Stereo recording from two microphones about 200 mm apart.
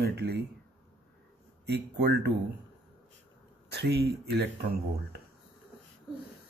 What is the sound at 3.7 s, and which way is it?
Speech, 55° right (ahead or behind).